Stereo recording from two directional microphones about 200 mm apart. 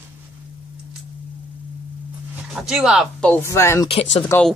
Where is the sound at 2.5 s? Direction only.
5° right (ahead or behind).